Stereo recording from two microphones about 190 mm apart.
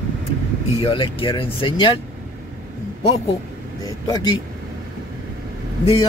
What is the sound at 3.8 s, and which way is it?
Speech, 20° left (ahead or behind).